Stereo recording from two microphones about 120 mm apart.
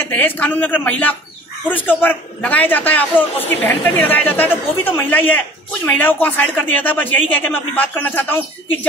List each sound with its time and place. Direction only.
0.0 s a man's voice: 15° left (ahead or behind)